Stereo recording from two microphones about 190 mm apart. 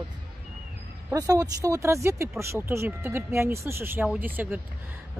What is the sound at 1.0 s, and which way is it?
Speech, 20° right (ahead or behind).